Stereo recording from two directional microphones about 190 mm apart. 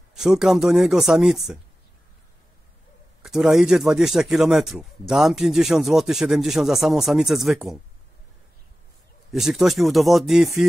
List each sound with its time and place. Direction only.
0.1 s a man's voice: centre (ahead or behind)
3.3 s a man's voice: centre (ahead or behind)
9.3 s a man's voice: centre (ahead or behind)